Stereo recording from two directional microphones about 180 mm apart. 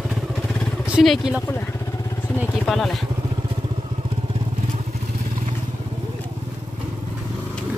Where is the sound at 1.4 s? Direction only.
10° left (ahead or behind).